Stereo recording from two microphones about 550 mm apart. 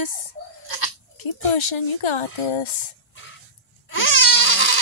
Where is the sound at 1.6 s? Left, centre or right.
Left.